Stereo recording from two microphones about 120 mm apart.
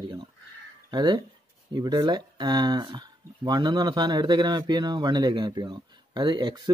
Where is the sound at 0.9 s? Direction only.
35° right (ahead or behind).